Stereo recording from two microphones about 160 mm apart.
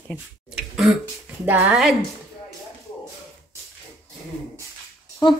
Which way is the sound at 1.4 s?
10° right (ahead or behind).